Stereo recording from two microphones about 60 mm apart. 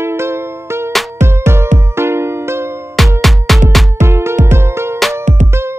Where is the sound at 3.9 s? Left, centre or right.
Right.